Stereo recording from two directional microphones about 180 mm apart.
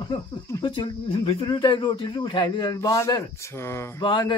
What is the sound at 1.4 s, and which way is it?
A man's voice, 25° left (ahead or behind).